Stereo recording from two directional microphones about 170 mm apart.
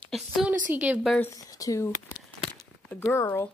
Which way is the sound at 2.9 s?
10° left (ahead or behind).